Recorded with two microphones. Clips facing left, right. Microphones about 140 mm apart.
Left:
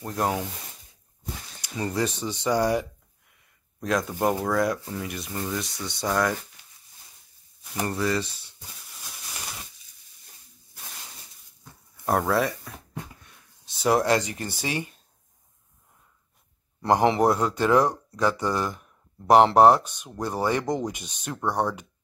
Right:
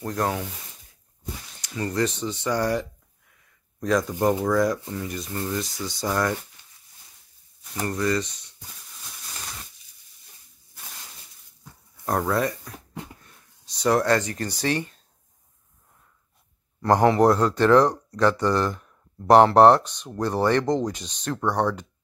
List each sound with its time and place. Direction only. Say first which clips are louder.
0.0 s speech: right 1 dB; 15° left (ahead or behind)
1.8 s speech: right 2 dB; 15° left (ahead or behind)
7.9 s speech: right 2 dB; 5° left (ahead or behind)
8.2 s speech: right 1 dB; 30° left (ahead or behind)
12.1 s speech: even; centre (ahead or behind)
16.8 s speech: right 2 dB; 20° left (ahead or behind)
17.2 s speech: right 3 dB; 5° left (ahead or behind)